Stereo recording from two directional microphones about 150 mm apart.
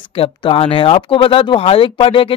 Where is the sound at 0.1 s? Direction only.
35° left (ahead or behind).